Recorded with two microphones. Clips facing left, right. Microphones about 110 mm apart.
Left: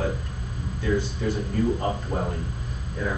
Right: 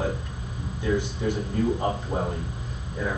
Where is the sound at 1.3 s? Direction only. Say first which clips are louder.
Even; 15° right (ahead or behind).